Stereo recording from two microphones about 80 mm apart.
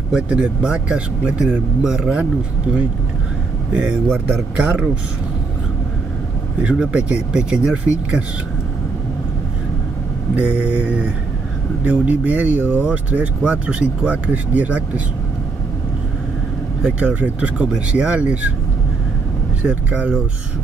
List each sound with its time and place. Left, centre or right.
0.1 s speech: centre
3.7 s speech: centre
6.6 s speech: centre
10.3 s speech: centre
16.8 s speech: centre
19.6 s speech: centre